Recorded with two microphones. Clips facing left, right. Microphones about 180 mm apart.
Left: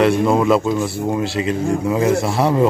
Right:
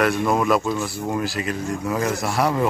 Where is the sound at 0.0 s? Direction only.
25° left (ahead or behind).